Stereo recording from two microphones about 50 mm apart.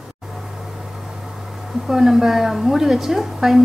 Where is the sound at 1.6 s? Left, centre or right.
Centre.